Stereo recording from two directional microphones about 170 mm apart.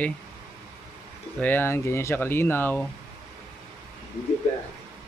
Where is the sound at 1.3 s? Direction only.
10° left (ahead or behind).